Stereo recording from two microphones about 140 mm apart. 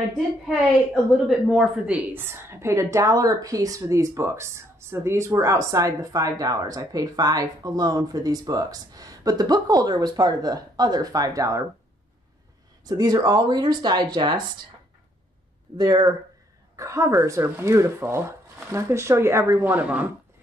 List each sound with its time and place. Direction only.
1.1 s speech: centre (ahead or behind)
2.1 s speech: 15° right (ahead or behind)
12.8 s speech: 30° right (ahead or behind)
15.8 s speech: 30° right (ahead or behind); by 20.1 s 10° right (ahead or behind)